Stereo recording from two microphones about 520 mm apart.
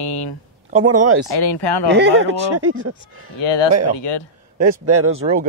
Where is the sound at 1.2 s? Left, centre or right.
Left.